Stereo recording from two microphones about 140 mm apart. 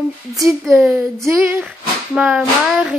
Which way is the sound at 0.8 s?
10° right (ahead or behind).